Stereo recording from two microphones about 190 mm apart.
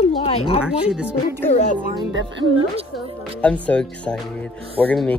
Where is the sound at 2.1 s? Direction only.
75° right (ahead or behind).